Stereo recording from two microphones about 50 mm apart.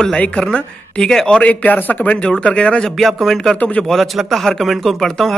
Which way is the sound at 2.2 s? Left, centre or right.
Left.